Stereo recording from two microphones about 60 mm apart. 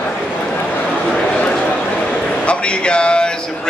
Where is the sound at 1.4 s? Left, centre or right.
Left.